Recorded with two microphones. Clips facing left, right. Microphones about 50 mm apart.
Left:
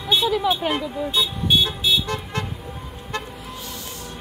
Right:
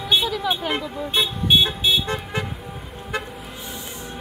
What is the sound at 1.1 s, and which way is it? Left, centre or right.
Vehicle, right.